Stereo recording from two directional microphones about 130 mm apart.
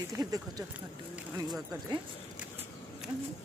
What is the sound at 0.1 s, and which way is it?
Speech, 30° right (ahead or behind).